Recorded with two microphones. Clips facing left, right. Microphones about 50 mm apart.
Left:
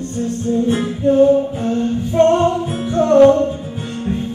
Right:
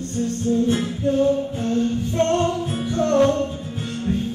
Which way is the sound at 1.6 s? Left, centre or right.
Centre.